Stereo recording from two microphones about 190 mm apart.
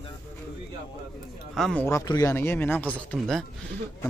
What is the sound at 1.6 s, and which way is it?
Speech, 5° left (ahead or behind).